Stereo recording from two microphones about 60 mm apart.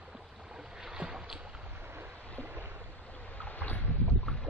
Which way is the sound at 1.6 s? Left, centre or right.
Right.